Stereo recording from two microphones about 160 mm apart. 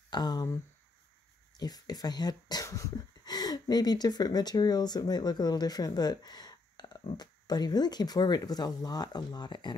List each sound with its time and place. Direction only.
0.1 s speech: 25° left (ahead or behind)
1.6 s speech: 25° left (ahead or behind)